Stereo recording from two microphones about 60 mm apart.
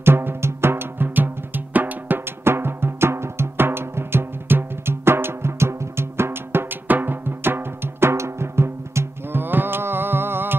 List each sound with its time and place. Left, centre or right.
0.0 s music: right